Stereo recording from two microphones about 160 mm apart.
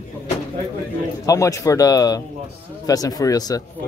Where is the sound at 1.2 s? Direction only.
20° left (ahead or behind).